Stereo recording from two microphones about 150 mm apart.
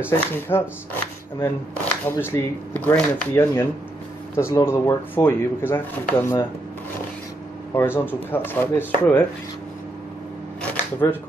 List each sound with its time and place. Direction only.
0.1 s speech: 15° left (ahead or behind)
2.0 s speech: 15° left (ahead or behind)
7.7 s speech: 15° left (ahead or behind)
10.6 s camera: 10° left (ahead or behind)